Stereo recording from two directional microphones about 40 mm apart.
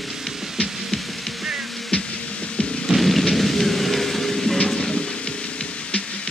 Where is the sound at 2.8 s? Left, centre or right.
Centre.